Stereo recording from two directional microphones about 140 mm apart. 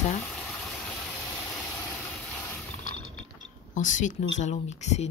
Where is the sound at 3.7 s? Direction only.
65° left (ahead or behind).